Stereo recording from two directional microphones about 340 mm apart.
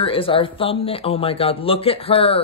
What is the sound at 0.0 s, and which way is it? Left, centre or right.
Speech, centre.